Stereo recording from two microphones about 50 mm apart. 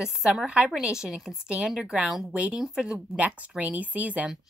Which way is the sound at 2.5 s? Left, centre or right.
Centre.